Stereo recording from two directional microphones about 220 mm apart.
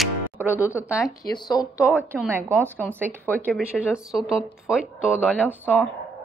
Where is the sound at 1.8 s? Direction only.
5° right (ahead or behind).